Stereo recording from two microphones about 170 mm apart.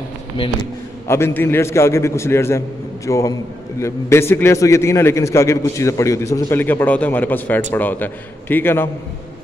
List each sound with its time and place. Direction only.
1.0 s a man's voice: 15° left (ahead or behind)